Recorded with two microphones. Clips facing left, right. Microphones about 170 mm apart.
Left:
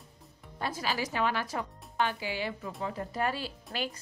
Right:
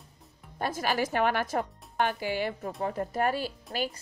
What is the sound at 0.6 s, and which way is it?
Speech, 50° right (ahead or behind).